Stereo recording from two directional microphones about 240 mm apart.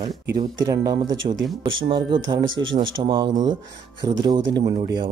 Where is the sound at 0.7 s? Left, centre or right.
Centre.